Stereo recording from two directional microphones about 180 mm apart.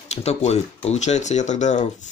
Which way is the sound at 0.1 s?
35° left (ahead or behind).